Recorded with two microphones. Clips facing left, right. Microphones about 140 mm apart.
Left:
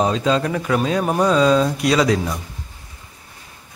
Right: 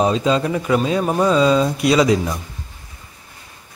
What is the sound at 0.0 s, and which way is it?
Speech, 5° right (ahead or behind).